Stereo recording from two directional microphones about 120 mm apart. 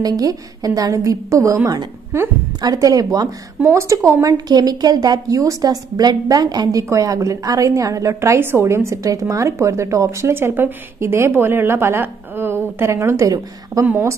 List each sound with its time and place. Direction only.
0.0 s speech: 30° right (ahead or behind)
2.6 s speech: 30° right (ahead or behind)